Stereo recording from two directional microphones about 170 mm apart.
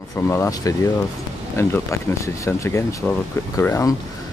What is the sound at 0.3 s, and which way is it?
Speech, 20° left (ahead or behind).